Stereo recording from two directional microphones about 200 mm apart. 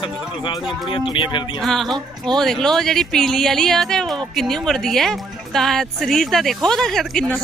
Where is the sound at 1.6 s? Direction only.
Centre (ahead or behind).